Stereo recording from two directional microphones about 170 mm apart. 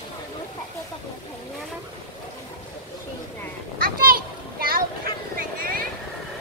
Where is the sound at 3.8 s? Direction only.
60° right (ahead or behind).